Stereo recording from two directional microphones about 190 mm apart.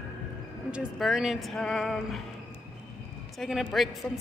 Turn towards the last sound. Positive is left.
turn(degrees=0)  # may be behind; listen again after turning